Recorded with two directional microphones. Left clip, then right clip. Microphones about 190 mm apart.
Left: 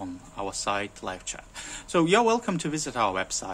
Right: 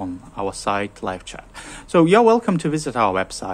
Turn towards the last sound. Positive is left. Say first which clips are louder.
# right 7 dB
turn(degrees=-25)  # may be behind; listen again after turning